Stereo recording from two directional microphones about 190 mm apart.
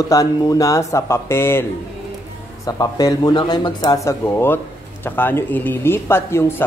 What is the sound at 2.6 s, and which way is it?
Speech, 20° left (ahead or behind).